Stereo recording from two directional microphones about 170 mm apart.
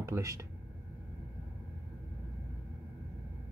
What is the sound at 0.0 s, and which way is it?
Speech, 20° right (ahead or behind).